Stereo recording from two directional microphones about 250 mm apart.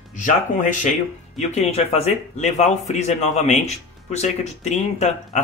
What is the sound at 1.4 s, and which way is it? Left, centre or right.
Speech, left.